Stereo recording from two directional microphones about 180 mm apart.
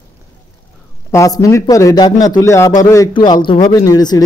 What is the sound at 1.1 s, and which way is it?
A man's voice, 15° left (ahead or behind).